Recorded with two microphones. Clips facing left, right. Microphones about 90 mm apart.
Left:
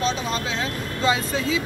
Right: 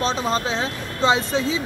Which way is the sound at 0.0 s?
35° right (ahead or behind).